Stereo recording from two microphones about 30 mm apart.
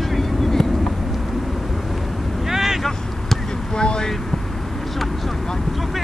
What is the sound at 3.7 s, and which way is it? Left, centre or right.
Vehicle, left.